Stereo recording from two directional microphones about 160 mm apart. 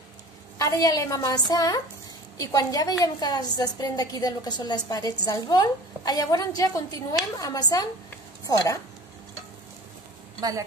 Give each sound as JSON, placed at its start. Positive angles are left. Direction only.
{"t": 0.6, "sound": "a woman's voice", "side_deg": 20}